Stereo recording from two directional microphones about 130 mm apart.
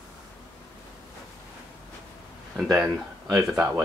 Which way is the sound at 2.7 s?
5° right (ahead or behind).